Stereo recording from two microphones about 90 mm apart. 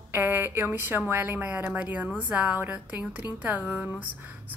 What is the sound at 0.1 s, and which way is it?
A woman's voice, 25° right (ahead or behind).